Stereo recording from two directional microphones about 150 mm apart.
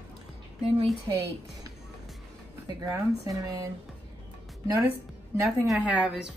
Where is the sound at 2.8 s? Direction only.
25° right (ahead or behind).